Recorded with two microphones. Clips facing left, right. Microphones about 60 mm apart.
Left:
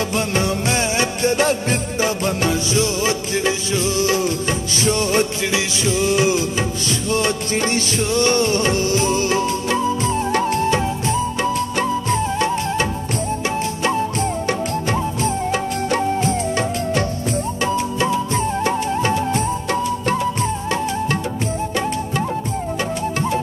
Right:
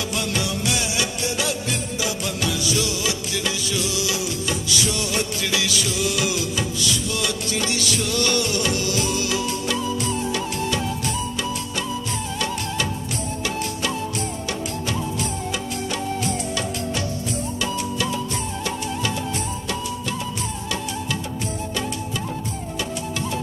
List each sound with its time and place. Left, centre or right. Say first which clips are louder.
0.1 s music: left 5 dB; left
14.9 s music: left 5 dB; left